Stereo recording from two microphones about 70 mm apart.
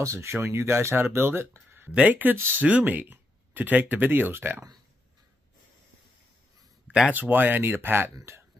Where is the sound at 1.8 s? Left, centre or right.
Right.